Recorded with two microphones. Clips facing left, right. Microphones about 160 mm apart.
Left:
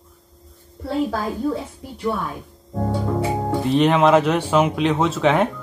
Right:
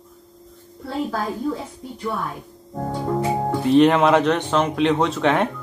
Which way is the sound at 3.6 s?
Centre (ahead or behind).